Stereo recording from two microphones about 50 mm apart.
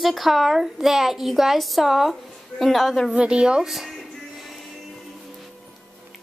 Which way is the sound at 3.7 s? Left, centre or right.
Centre.